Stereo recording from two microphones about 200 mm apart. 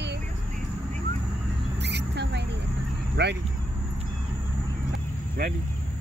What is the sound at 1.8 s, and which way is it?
Vehicle, 60° right (ahead or behind).